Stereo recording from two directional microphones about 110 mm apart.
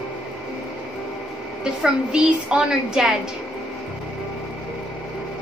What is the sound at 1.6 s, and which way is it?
A woman's voice, 5° right (ahead or behind).